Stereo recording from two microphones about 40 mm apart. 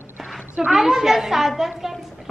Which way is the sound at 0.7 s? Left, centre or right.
Centre.